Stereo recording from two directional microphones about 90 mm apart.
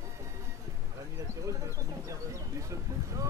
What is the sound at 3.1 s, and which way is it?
Boat, 35° right (ahead or behind).